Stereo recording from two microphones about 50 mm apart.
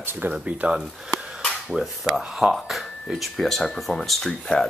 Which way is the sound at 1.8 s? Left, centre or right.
Centre.